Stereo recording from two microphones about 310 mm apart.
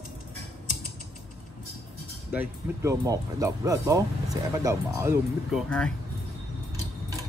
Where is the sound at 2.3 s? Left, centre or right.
Centre.